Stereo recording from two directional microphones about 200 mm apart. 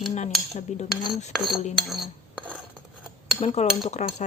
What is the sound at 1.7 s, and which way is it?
Cutlery, centre (ahead or behind).